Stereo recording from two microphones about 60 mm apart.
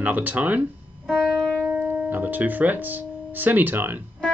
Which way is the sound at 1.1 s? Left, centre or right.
Centre.